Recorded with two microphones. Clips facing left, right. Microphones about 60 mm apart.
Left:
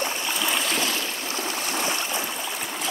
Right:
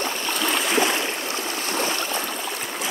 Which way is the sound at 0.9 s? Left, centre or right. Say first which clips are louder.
Right 4 dB; right.